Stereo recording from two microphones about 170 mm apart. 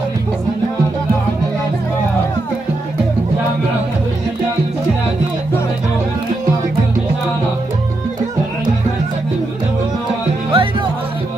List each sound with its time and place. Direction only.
10.5 s music: 30° right (ahead or behind)